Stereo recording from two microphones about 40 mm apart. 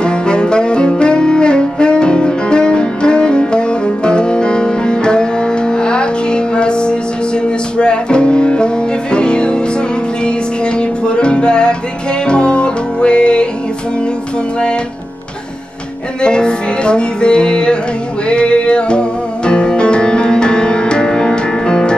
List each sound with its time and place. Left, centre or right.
0.0 s saxophone: left
7.4 s music: left
16.2 s music: left